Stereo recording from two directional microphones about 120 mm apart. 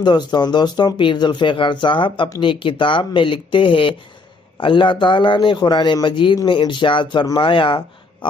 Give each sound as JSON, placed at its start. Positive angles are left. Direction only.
{"t": 0.0, "sound": "a man's voice", "side_deg": 35}